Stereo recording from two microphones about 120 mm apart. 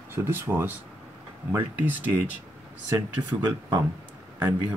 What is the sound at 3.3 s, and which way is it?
Speech, 25° right (ahead or behind).